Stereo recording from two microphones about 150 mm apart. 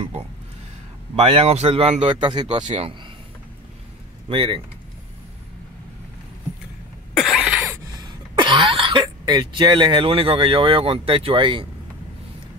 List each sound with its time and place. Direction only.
1.1 s a man's voice: 40° right (ahead or behind)
2.6 s a man's voice: 45° right (ahead or behind)
4.3 s a man's voice: 35° right (ahead or behind)
7.2 s cough: 5° right (ahead or behind)
7.9 s speech: 30° right (ahead or behind)